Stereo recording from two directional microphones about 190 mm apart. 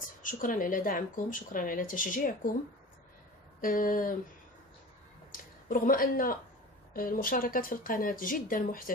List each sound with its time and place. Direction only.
0.0 s speech: 45° left (ahead or behind)
3.6 s speech: 45° left (ahead or behind)
5.7 s speech: 45° left (ahead or behind)